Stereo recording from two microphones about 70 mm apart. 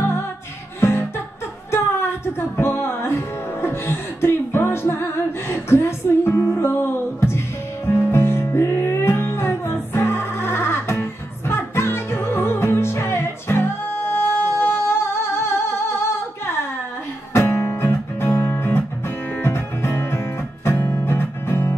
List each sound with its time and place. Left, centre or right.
0.7 s music: left
17.3 s music: left